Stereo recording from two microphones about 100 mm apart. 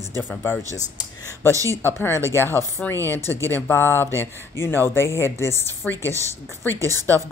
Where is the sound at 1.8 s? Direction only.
25° left (ahead or behind).